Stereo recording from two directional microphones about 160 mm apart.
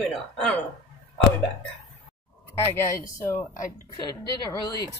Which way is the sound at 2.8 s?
15° left (ahead or behind).